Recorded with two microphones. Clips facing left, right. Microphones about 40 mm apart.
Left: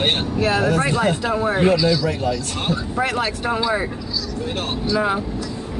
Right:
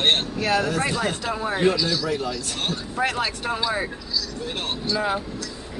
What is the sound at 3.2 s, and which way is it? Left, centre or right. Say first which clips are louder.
Speech: left 4 dB; centre.